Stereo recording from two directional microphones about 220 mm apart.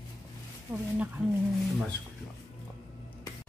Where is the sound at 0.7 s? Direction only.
10° right (ahead or behind).